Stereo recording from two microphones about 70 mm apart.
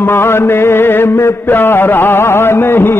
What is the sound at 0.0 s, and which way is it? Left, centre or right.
Mantra, left.